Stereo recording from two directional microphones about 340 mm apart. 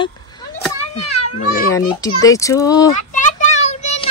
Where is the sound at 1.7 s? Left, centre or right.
Centre.